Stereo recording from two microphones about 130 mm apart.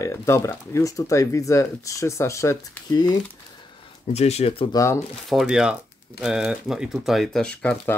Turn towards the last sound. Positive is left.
turn(degrees=10)  # may be behind; listen again after turning